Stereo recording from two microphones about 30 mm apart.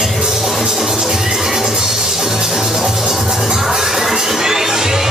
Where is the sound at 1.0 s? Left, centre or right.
Centre.